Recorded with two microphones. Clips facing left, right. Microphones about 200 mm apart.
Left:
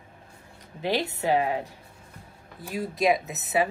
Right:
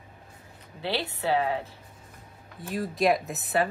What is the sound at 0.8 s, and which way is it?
Speech, 15° left (ahead or behind).